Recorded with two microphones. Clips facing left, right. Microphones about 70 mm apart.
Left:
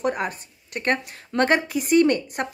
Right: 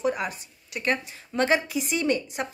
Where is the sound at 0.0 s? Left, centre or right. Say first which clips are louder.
Left 2 dB; left.